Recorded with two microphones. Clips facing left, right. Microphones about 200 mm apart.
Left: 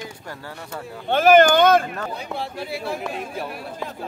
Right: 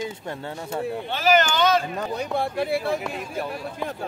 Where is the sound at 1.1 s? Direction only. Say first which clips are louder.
Left 8 dB; 55° left (ahead or behind).